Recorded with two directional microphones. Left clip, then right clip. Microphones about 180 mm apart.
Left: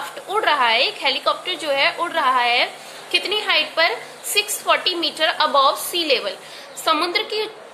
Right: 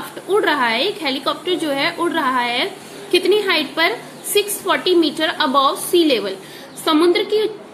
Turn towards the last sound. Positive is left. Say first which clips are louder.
# right 6 dB
turn(degrees=5)  # may be behind; listen again after turning